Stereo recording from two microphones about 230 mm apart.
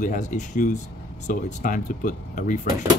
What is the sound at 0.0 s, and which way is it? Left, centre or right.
Speech, left.